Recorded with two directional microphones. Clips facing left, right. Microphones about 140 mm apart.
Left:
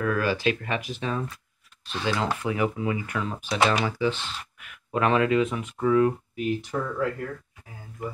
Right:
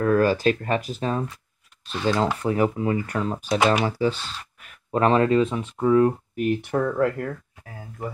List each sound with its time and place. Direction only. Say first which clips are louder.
0.0 s speech: right 6 dB; 40° right (ahead or behind)
2.4 s speech: right 4 dB; 40° right (ahead or behind)
3.5 s speech: right 3 dB; 15° right (ahead or behind)
3.8 s speech: right 3 dB; 40° right (ahead or behind)
6.3 s speech: right 4 dB; 55° right (ahead or behind)